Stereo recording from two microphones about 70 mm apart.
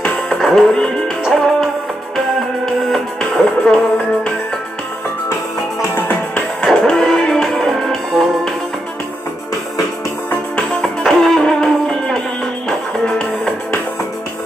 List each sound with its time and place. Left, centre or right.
0.0 s music: centre
5.9 s music: left
6.6 s music: centre
10.3 s music: centre
11.1 s music: centre